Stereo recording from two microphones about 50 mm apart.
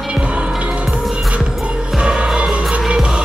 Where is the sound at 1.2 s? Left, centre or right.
Right.